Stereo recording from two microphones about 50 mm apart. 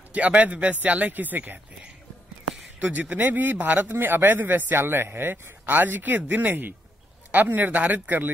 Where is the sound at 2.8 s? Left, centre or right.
Right.